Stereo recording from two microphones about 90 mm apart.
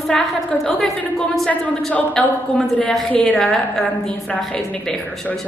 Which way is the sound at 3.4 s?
5° left (ahead or behind).